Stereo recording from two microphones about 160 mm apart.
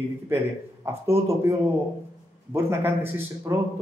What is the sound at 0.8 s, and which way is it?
A man's voice, 15° right (ahead or behind).